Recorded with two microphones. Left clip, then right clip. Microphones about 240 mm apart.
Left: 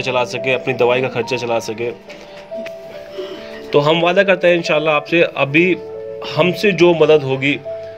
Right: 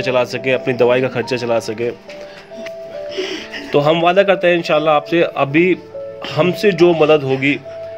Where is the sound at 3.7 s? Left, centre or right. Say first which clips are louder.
Right 1 dB; centre.